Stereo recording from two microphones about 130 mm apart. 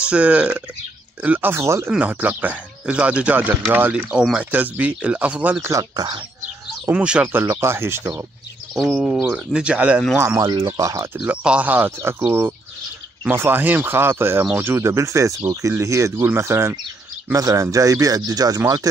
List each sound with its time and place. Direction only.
0.0 s speech: 10° right (ahead or behind); by 6.2 s 35° right (ahead or behind)
6.9 s speech: 10° right (ahead or behind)
7.4 s speech: 20° right (ahead or behind)
8.7 s speech: 5° right (ahead or behind)
10.1 s speech: 20° right (ahead or behind)
11.1 s speech: 10° right (ahead or behind); by 18.9 s 25° right (ahead or behind)